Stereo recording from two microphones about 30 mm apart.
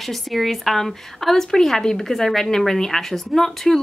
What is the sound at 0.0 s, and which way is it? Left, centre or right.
Speech, centre.